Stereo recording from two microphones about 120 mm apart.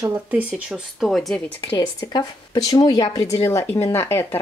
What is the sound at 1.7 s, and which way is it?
Speech, 35° left (ahead or behind).